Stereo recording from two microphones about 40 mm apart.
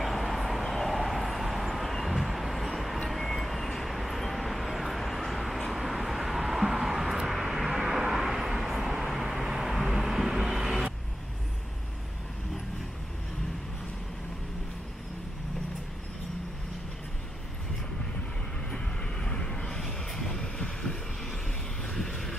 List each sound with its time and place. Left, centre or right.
0.0 s vehicle: centre
19.2 s vehicle: centre
20.3 s a sound: centre
21.9 s vehicle: centre